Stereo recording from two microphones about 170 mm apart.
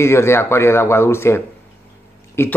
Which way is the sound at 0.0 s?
15° left (ahead or behind).